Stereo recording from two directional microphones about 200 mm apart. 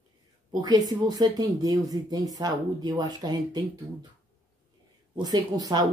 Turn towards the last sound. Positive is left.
turn(degrees=-20)  # may be behind; listen again after turning